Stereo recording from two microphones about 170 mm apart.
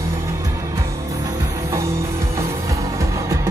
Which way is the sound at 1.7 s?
15° right (ahead or behind).